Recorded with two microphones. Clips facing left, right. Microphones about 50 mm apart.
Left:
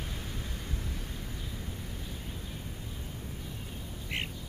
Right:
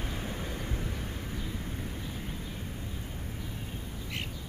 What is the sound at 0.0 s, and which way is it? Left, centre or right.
Vehicle, right.